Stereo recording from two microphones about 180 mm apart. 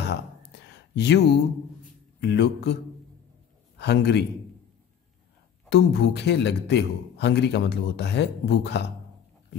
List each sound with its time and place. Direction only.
0.9 s a man's voice: 70° left (ahead or behind)
5.7 s a man's voice: 70° left (ahead or behind)